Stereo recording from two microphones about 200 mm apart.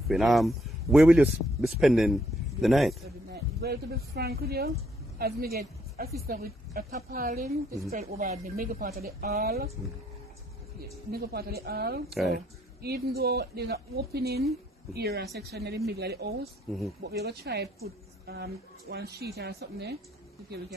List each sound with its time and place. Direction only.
0.1 s speech: centre (ahead or behind)
3.3 s a woman's voice: 50° right (ahead or behind)
11.1 s a woman's voice: 50° right (ahead or behind)